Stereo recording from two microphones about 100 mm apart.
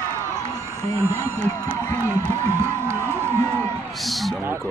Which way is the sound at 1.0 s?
25° right (ahead or behind).